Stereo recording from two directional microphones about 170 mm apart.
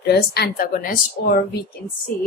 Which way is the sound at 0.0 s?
75° left (ahead or behind).